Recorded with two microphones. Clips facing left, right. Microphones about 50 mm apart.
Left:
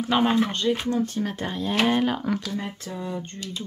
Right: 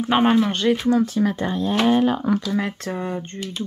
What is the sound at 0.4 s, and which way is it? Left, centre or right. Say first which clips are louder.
Speech: right 4 dB; right.